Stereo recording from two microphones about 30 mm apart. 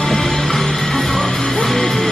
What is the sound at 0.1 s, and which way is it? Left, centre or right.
Music, centre.